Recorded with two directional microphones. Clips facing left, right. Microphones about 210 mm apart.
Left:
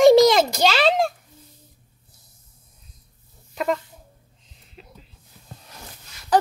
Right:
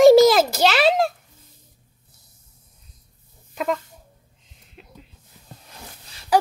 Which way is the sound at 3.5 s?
Centre (ahead or behind).